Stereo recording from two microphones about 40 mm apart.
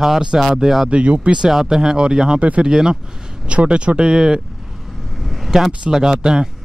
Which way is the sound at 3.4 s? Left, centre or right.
Right.